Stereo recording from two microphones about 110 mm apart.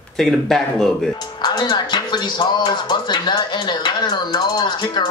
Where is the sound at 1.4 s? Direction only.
40° left (ahead or behind).